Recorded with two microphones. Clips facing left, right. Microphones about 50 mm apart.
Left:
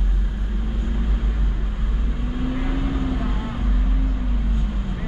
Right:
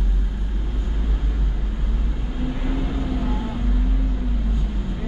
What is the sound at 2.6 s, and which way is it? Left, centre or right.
Vehicle, centre.